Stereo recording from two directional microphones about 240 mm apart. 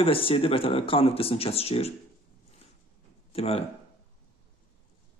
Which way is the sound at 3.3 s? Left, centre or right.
Left.